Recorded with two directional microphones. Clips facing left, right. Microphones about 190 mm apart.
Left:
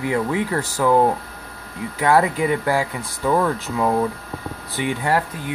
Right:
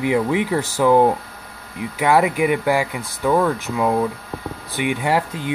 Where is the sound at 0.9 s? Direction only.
10° right (ahead or behind).